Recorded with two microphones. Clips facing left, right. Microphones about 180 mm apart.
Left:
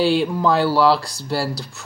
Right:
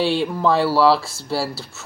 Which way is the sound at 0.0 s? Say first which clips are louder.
Left 2 dB; centre (ahead or behind).